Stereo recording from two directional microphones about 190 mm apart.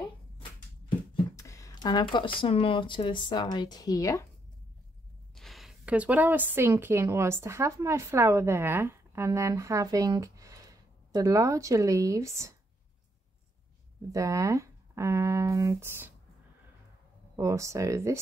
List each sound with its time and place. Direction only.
0.0 s speech: 25° left (ahead or behind)
5.3 s speech: centre (ahead or behind); by 12.5 s 15° right (ahead or behind)
14.1 s speech: 15° right (ahead or behind)
17.4 s speech: 15° right (ahead or behind)